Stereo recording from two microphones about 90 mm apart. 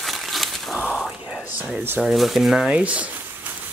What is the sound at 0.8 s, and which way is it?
Whispering, 15° left (ahead or behind).